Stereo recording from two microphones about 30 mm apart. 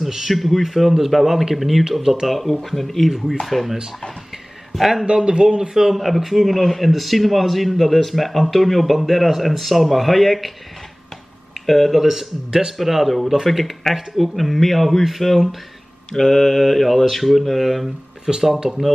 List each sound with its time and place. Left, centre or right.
0.3 s a man's voice: centre
1.9 s speech: centre
2.2 s a man's voice: centre
4.7 s speech: centre
5.0 s speech: right
5.7 s a man's voice: centre
11.6 s speech: centre
12.0 s a man's voice: centre
16.1 s a man's voice: centre
18.2 s speech: centre